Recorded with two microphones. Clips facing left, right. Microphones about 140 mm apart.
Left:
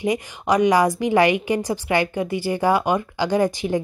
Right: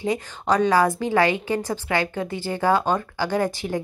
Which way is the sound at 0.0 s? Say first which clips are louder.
Left 2 dB; 15° left (ahead or behind).